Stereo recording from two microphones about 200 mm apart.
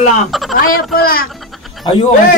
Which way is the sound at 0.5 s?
45° left (ahead or behind).